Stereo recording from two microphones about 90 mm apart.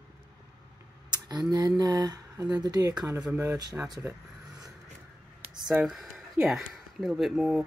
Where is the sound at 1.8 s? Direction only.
50° right (ahead or behind).